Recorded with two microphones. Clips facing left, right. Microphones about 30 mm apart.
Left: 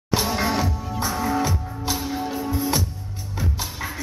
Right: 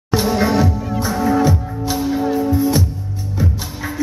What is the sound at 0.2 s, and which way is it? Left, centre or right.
Music, centre.